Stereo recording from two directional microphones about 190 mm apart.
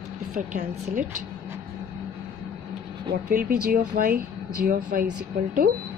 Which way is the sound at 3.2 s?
50° right (ahead or behind).